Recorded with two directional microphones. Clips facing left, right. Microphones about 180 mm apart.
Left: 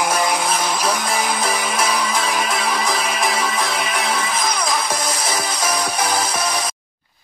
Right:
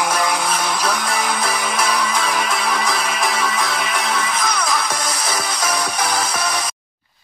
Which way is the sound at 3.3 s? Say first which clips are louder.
Even; 30° left (ahead or behind).